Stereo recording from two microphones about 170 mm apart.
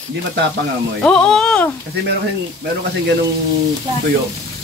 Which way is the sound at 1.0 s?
5° left (ahead or behind).